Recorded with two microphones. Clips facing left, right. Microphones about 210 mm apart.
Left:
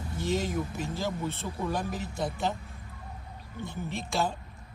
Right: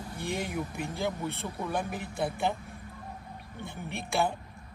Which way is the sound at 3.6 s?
60° right (ahead or behind).